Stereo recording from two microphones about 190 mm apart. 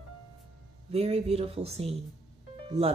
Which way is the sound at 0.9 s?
35° right (ahead or behind).